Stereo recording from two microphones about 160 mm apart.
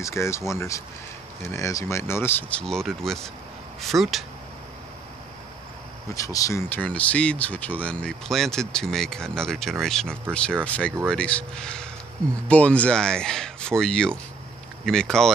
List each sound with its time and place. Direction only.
0.0 s speech: 15° left (ahead or behind)
2.6 s speech: 5° left (ahead or behind)
6.1 s speech: 20° left (ahead or behind); by 15.3 s 5° left (ahead or behind)